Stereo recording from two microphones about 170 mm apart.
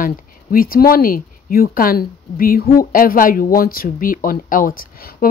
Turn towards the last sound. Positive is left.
turn(degrees=60)  # may be behind; listen again after turning